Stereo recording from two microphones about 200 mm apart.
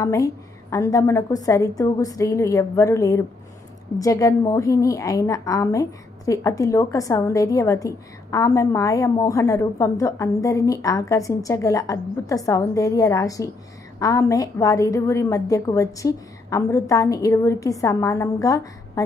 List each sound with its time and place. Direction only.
0.0 s a woman's voice: 15° left (ahead or behind)